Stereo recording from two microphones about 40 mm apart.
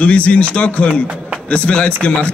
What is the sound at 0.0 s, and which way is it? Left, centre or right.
A man's voice, left.